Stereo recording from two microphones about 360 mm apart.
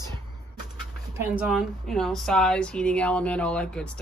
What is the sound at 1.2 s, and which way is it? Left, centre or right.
A woman's voice, centre.